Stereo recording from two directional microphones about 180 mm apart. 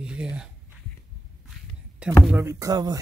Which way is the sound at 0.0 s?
5° right (ahead or behind).